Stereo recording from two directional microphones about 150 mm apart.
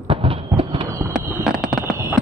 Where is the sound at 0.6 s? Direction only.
40° right (ahead or behind).